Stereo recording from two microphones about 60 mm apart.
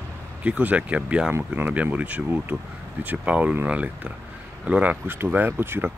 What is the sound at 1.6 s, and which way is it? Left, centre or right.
Speech, right.